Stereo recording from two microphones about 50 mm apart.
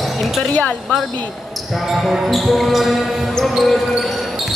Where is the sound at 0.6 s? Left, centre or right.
Left.